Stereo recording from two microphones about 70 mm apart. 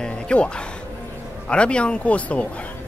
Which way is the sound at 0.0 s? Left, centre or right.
Centre.